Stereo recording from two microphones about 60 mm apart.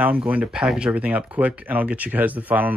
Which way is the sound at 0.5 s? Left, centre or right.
Centre.